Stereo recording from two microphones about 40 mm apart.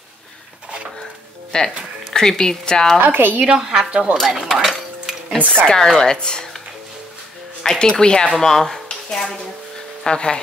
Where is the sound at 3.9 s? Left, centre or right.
Right.